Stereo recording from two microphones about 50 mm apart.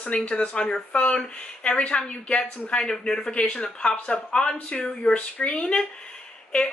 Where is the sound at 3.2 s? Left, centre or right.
Left.